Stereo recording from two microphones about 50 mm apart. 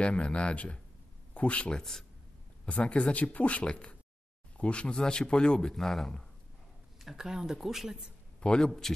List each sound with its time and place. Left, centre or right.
0.0 s speech: left
1.8 s speech: centre
2.6 s speech: left
7.0 s speech: centre
8.4 s a man's voice: left